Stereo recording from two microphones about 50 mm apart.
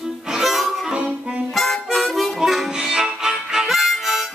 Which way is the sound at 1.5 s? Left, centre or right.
Centre.